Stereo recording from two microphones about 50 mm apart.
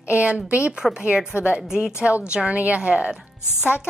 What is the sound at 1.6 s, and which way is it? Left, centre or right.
Speech, centre.